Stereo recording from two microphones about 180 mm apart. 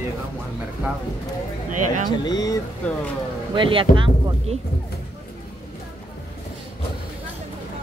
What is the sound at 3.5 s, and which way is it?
Speech, 30° right (ahead or behind).